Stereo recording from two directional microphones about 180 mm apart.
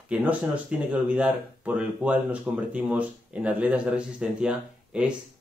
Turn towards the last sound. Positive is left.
turn(degrees=-5)  # may be behind; listen again after turning